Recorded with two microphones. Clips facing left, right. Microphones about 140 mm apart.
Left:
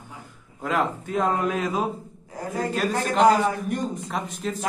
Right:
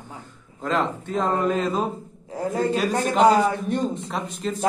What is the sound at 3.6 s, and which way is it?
Speech, 25° right (ahead or behind).